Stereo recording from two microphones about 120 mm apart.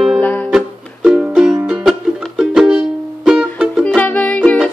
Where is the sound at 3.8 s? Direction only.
10° left (ahead or behind).